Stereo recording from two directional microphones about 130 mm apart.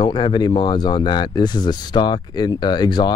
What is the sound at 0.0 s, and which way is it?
Speech, 35° left (ahead or behind).